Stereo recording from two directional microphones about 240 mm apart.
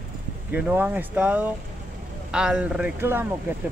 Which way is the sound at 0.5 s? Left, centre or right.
Centre.